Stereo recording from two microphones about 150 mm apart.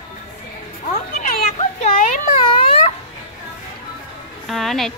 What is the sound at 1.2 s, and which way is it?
Children playing, 55° left (ahead or behind).